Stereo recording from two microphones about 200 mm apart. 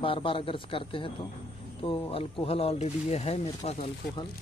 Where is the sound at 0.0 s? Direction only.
25° left (ahead or behind).